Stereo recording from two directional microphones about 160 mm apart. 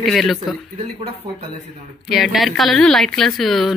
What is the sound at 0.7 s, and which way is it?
Speech, 40° right (ahead or behind).